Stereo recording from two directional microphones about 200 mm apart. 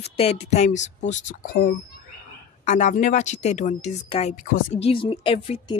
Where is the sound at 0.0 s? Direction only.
30° left (ahead or behind).